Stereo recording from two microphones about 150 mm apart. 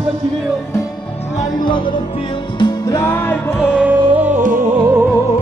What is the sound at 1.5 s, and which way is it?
Music, 30° left (ahead or behind).